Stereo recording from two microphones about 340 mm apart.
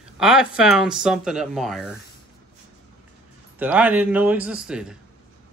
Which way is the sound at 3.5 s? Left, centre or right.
Centre.